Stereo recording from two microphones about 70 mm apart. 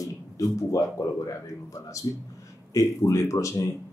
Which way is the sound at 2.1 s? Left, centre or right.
Left.